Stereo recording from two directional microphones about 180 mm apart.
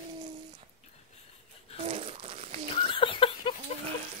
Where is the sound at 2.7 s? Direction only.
30° left (ahead or behind).